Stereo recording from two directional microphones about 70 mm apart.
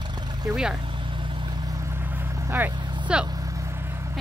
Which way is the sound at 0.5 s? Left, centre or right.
Centre.